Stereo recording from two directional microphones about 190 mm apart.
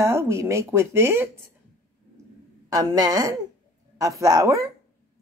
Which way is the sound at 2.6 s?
20° right (ahead or behind).